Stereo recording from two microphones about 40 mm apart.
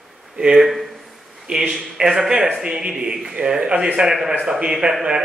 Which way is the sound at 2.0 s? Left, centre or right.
Centre.